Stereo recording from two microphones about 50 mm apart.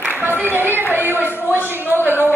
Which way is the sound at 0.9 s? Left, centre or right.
Right.